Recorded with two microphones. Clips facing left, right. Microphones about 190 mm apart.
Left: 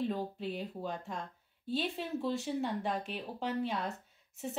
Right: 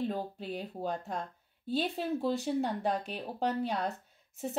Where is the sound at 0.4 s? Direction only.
40° right (ahead or behind).